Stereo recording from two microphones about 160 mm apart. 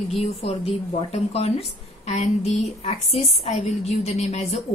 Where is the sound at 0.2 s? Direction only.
40° left (ahead or behind).